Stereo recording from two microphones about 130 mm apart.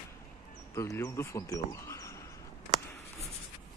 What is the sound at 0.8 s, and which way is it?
Speech, 25° left (ahead or behind).